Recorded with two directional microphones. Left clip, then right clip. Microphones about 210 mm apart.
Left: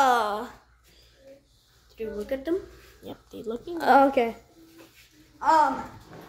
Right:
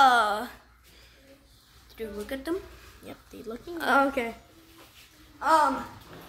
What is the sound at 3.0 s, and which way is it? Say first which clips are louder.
A woman's voice: left 5 dB; 5° left (ahead or behind).